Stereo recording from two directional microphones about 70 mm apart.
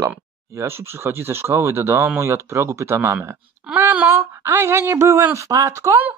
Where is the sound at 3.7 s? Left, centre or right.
Right.